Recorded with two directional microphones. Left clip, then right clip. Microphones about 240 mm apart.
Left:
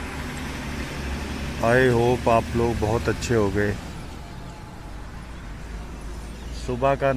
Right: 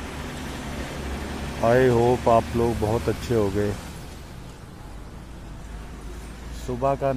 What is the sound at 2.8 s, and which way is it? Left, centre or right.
Speech, centre.